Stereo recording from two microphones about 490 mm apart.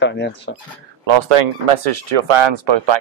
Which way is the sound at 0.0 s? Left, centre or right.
Left.